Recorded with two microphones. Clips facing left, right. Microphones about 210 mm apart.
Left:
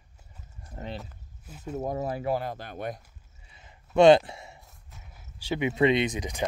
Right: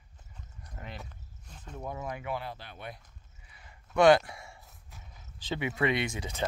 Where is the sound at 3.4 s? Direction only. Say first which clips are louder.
Left 2 dB; 25° left (ahead or behind).